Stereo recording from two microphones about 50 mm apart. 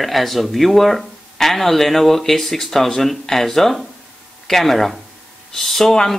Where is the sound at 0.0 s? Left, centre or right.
Centre.